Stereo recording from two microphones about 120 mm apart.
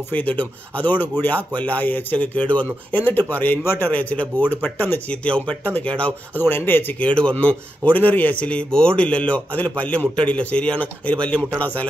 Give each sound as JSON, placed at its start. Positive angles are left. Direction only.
{"t": 0.1, "sound": "speech", "side_deg": 15}